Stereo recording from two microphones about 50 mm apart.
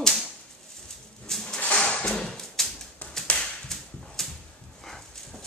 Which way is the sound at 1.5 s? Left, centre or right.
Left.